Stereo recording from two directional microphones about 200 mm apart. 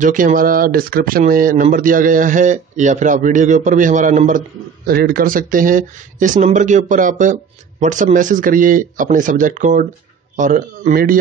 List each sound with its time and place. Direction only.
0.0 s speech: 40° right (ahead or behind)
4.8 s speech: 50° right (ahead or behind)